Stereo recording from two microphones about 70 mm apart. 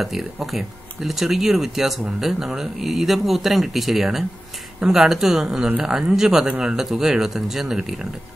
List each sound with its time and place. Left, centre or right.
0.0 s speech: centre